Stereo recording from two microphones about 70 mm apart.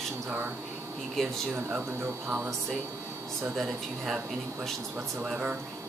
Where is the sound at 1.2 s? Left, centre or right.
Centre.